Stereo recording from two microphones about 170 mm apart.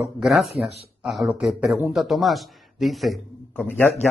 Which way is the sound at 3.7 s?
10° left (ahead or behind).